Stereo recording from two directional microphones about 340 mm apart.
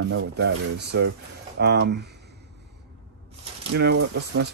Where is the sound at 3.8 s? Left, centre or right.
Right.